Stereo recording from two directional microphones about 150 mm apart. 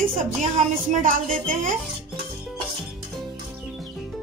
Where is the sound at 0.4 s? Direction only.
55° right (ahead or behind).